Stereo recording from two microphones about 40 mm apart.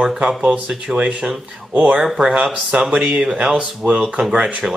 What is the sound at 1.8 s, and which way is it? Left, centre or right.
Speech, right.